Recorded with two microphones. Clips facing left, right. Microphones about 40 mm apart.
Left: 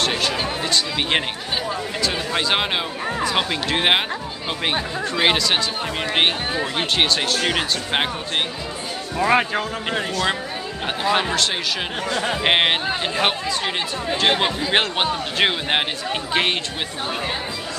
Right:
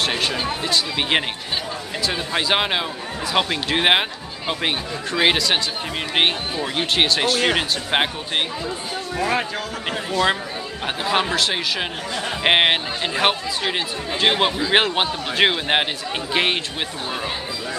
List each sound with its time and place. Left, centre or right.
0.0 s a sound: centre
2.0 s speech: centre
6.6 s speech: centre
9.2 s speech: centre
11.1 s speech: centre